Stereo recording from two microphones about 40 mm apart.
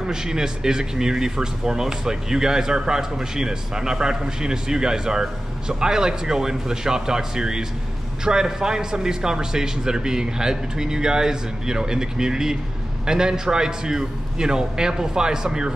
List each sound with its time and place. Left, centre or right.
0.0 s speech: centre